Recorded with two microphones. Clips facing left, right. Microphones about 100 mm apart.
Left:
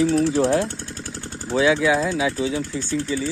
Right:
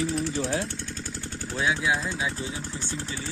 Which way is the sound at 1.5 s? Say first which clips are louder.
Left 9 dB; 80° left.